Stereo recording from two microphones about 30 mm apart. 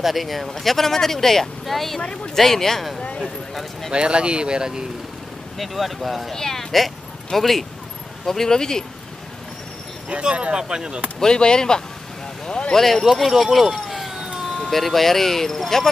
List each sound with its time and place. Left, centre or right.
0.0 s speech: centre
2.0 s speech: left
2.3 s speech: centre
3.9 s speech: right
5.6 s speech: centre
6.3 s speech: centre
7.3 s speech: centre
8.3 s speech: centre
10.0 s speech: right
10.5 s speech: right
11.1 s speech: left
12.7 s speech: centre
13.2 s speech: centre
14.7 s speech: centre